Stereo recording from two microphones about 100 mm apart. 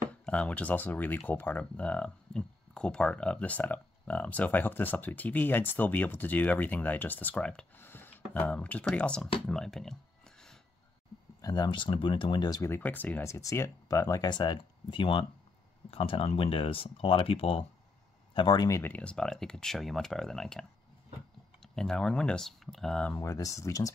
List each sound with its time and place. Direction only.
0.1 s speech: 10° left (ahead or behind)
11.4 s speech: 40° left (ahead or behind)
11.7 s speech: 55° left (ahead or behind)
12.6 s speech: 20° left (ahead or behind); by 17.6 s 70° left (ahead or behind)
18.3 s speech: 50° left (ahead or behind)
18.7 s speech: 25° left (ahead or behind)
18.9 s speech: 10° left (ahead or behind)
21.7 s speech: 5° left (ahead or behind)
23.1 s speech: 30° left (ahead or behind)